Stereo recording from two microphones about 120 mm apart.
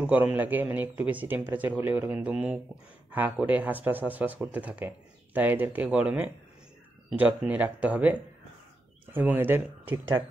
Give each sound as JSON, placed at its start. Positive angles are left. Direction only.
{"t": 0.0, "sound": "a man's voice", "side_deg": -10}